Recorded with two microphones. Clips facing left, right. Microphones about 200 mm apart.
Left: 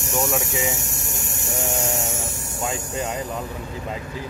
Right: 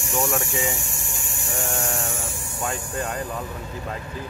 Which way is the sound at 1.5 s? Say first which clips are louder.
Left 2 dB; 20° left (ahead or behind).